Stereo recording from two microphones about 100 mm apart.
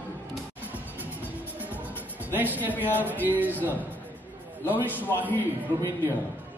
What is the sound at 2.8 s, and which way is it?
A man's voice, 20° right (ahead or behind).